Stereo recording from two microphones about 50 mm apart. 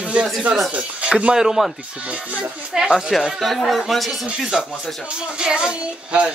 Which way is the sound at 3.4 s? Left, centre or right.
Centre.